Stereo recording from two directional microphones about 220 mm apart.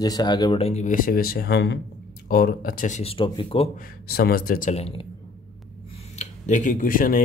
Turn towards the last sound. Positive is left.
turn(degrees=40)  # may be behind; listen again after turning